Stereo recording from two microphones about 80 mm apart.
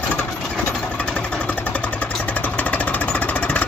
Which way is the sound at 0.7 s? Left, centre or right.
Centre.